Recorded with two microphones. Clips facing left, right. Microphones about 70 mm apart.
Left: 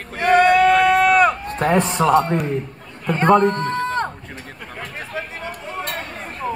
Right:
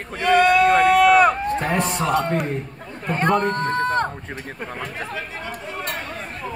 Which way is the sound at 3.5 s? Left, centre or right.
Right.